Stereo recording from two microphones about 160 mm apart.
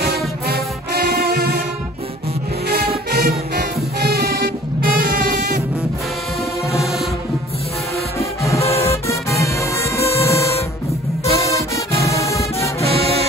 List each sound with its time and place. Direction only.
0.0 s music: 75° right (ahead or behind)
3.1 s music: 75° right (ahead or behind); by 5.6 s 55° right (ahead or behind)
8.5 s music: 40° left (ahead or behind)
8.8 s music: 15° left (ahead or behind)
11.5 s music: 20° left (ahead or behind)
12.8 s music: 40° right (ahead or behind)